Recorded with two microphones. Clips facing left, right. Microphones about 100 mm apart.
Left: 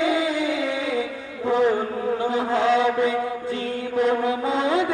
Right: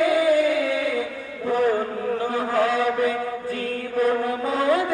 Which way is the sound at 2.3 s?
20° left (ahead or behind).